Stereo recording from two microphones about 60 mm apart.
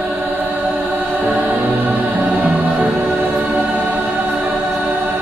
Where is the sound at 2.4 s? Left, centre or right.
Right.